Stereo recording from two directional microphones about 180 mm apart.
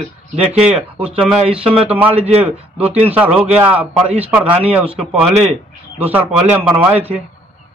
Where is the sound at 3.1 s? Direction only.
10° right (ahead or behind).